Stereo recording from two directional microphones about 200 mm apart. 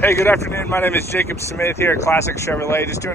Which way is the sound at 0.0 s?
10° left (ahead or behind).